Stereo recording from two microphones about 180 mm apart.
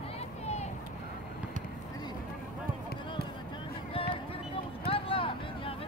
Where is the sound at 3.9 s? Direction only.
30° left (ahead or behind).